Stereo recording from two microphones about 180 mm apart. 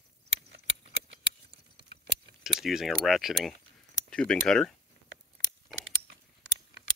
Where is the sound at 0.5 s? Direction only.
30° right (ahead or behind).